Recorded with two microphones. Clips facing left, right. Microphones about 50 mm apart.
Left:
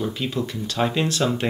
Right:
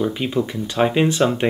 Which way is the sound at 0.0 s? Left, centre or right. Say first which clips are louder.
Right 5 dB; right.